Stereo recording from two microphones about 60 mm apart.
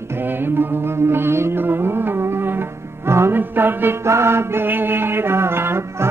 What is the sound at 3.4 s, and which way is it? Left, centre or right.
Music, right.